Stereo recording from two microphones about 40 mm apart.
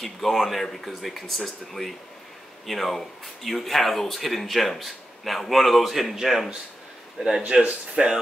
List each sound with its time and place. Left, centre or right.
0.0 s speech: centre
7.2 s speech: centre